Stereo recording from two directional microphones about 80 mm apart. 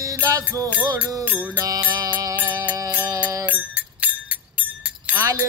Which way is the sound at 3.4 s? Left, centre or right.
Centre.